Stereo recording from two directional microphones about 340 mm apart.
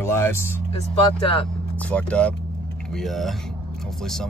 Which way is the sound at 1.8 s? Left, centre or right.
Centre.